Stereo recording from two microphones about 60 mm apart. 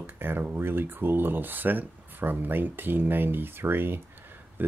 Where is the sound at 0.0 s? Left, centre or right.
Right.